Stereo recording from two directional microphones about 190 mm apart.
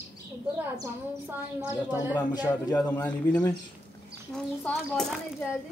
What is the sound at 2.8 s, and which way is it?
Speech, 10° left (ahead or behind).